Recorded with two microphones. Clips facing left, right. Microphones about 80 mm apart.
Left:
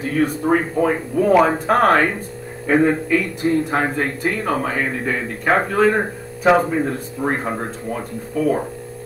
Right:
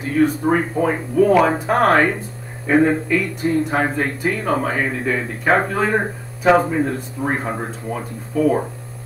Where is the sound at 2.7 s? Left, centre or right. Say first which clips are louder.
Even; centre.